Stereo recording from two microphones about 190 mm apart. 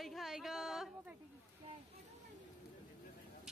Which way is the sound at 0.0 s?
Centre (ahead or behind).